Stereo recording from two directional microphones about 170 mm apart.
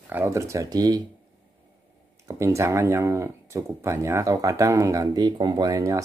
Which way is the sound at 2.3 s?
15° right (ahead or behind).